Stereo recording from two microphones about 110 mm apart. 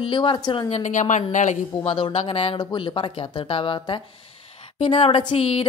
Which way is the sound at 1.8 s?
55° left (ahead or behind).